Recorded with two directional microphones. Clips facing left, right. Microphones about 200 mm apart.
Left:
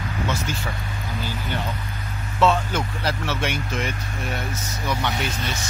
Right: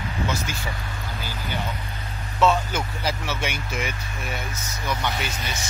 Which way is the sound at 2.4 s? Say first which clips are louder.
Left 1 dB; centre (ahead or behind).